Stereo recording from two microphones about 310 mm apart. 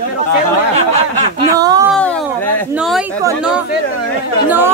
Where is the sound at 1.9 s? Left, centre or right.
Centre.